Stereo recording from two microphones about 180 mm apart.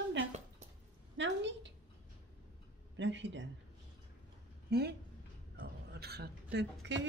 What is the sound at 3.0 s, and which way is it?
Speech, 85° right.